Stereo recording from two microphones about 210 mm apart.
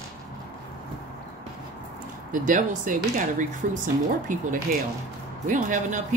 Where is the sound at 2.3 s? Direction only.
40° right (ahead or behind).